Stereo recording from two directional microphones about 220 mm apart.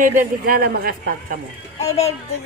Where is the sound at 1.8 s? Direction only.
30° left (ahead or behind).